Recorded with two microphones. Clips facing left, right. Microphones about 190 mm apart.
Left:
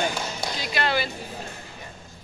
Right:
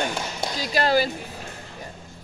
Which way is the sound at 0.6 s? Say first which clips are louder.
Right 5 dB; 40° right (ahead or behind).